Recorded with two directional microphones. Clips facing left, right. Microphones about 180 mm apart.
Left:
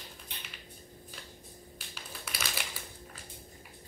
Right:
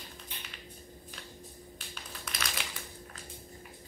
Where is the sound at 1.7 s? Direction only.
5° left (ahead or behind).